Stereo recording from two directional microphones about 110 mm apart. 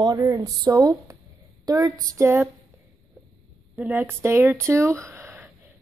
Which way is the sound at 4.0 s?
25° right (ahead or behind).